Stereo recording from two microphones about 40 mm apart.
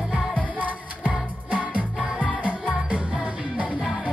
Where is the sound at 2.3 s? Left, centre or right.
Right.